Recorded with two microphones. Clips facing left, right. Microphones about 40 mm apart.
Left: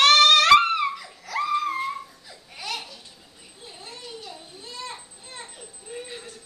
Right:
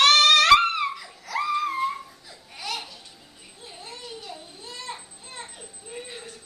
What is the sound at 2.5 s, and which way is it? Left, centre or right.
Babbling, centre.